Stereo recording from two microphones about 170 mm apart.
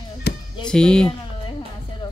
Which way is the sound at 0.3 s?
75° left (ahead or behind).